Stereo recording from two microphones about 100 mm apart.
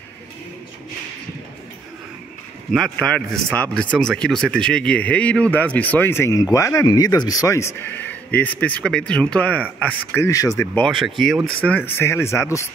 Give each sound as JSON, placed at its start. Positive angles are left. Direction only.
{"t": 3.0, "sound": "speech", "side_deg": 5}
{"t": 10.1, "sound": "speech", "side_deg": 30}
{"t": 10.9, "sound": "speech", "side_deg": 0}
{"t": 11.6, "sound": "speech", "side_deg": 20}